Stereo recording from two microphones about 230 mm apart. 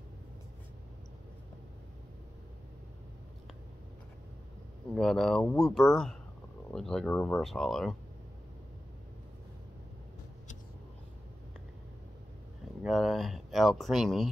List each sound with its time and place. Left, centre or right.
4.9 s speech: centre
12.8 s speech: centre